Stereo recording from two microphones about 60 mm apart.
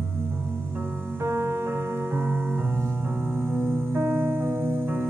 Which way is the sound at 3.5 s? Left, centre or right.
Right.